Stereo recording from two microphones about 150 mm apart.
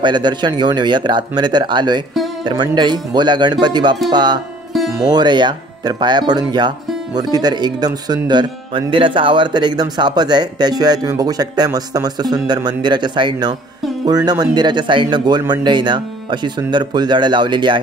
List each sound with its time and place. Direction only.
0.0 s speech: 30° right (ahead or behind)